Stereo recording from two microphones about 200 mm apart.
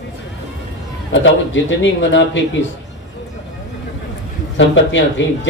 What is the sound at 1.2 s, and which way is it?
A man's voice, 70° left (ahead or behind).